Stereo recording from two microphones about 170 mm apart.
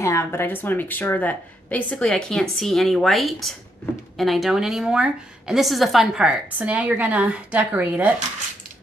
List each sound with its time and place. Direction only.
0.0 s a woman's voice: 15° left (ahead or behind); by 8.2 s 10° right (ahead or behind)